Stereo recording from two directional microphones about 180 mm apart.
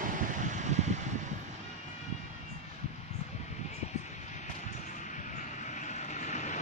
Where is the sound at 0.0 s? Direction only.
45° right (ahead or behind).